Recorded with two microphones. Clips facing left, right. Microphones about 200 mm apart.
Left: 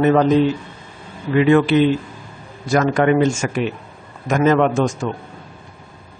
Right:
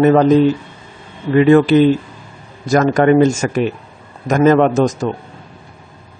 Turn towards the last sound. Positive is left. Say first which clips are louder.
# right 4 dB
turn(degrees=-40)  # may be behind; listen again after turning